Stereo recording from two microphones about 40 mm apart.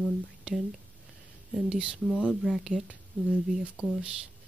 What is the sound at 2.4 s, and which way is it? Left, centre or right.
Speech, centre.